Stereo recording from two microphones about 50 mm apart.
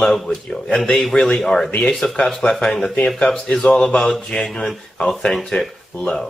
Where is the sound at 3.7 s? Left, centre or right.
Centre.